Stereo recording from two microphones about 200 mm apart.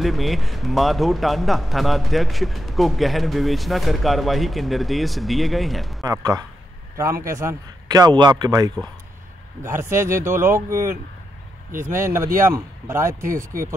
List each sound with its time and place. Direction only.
0.0 s speech: centre (ahead or behind)
6.0 s a man's voice: 20° right (ahead or behind)